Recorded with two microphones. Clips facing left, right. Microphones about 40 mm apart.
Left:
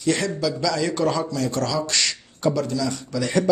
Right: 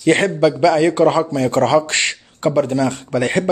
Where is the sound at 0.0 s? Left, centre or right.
Right.